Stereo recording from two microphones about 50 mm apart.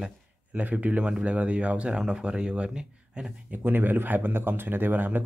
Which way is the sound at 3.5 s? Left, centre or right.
Right.